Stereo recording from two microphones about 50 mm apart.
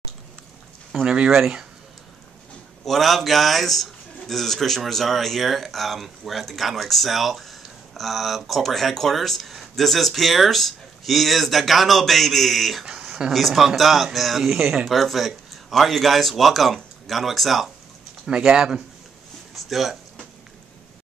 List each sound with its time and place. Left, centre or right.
1.0 s speech: centre
2.8 s speech: centre
12.8 s a sound: centre
13.3 s speech: centre
18.4 s speech: centre
19.5 s a sound: centre